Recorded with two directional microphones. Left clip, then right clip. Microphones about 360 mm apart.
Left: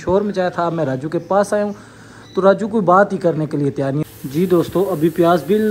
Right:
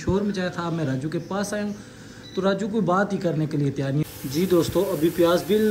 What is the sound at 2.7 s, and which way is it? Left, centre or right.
Speech, left.